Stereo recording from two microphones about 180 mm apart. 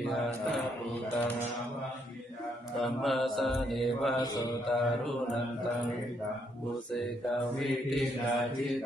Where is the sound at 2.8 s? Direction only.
Centre (ahead or behind).